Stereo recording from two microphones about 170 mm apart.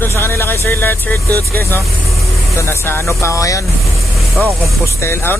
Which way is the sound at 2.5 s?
15° left (ahead or behind).